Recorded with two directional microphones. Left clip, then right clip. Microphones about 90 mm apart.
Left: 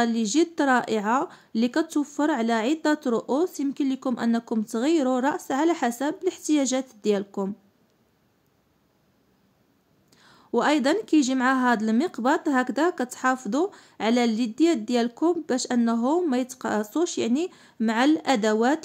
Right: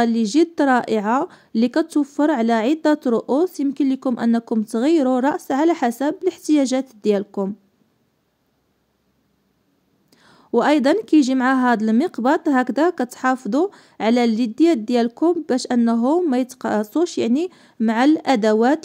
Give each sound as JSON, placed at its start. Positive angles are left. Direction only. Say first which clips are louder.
{"t": 0.0, "sound": "a woman's voice", "louder": "right 5 dB", "side_deg": -30}
{"t": 10.1, "sound": "a woman's voice", "louder": "right 6 dB", "side_deg": -40}